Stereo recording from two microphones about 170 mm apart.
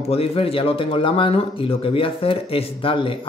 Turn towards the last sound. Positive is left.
turn(degrees=30)  # may be behind; listen again after turning